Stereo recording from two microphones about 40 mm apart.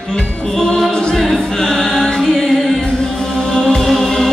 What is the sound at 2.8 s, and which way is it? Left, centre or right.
Music, centre.